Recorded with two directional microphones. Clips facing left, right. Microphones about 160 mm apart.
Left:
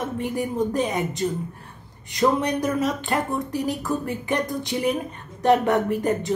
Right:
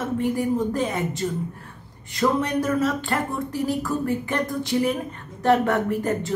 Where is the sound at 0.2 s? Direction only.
20° left (ahead or behind).